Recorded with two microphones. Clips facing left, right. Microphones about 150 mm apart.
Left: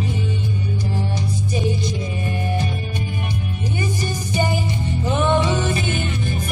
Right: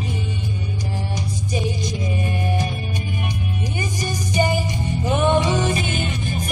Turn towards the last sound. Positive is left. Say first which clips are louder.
# left 1 dB
turn(degrees=-15)  # may be behind; listen again after turning